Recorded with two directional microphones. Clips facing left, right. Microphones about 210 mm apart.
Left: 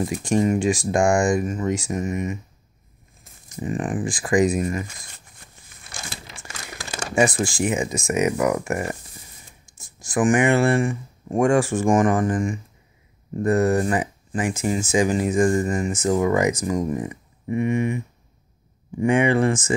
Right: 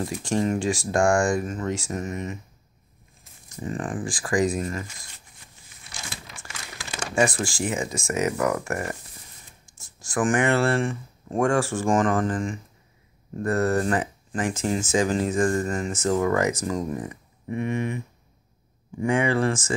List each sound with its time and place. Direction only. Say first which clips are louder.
0.0 s speech: left 4 dB; 15° left (ahead or behind)
3.5 s speech: left 4 dB; 15° left (ahead or behind)
5.4 s a sound: left 3 dB; 50° left (ahead or behind)
6.2 s crumpling: left 2 dB; 40° left (ahead or behind)
7.2 s speech: left 3 dB; 20° left (ahead or behind)